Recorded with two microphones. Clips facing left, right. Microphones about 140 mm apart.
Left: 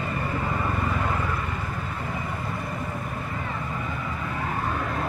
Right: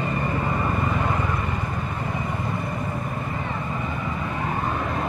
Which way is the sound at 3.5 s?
20° right (ahead or behind).